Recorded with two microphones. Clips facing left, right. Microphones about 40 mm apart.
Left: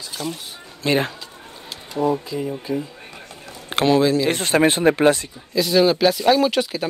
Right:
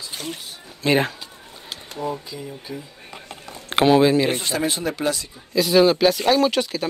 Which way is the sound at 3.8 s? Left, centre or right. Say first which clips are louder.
Right 1 dB; centre.